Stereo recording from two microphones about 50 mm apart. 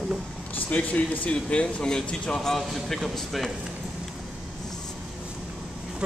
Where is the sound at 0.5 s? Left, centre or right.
Left; by 3.5 s centre.